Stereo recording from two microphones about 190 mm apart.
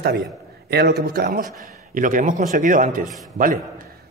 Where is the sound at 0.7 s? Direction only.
60° right (ahead or behind).